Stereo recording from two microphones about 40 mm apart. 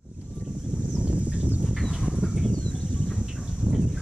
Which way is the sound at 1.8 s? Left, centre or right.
Centre.